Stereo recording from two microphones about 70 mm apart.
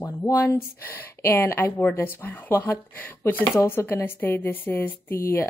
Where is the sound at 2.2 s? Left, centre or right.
Left.